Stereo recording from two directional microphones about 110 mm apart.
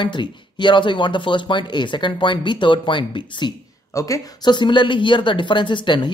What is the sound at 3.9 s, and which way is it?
Speech, 30° left (ahead or behind).